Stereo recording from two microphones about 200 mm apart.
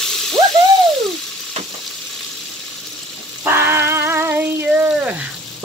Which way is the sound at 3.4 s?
10° right (ahead or behind).